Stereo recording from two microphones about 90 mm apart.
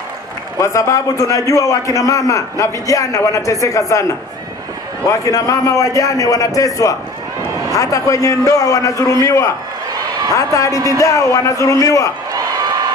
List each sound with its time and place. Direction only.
0.6 s a man's voice: 35° left (ahead or behind)
5.1 s a man's voice: 40° left (ahead or behind)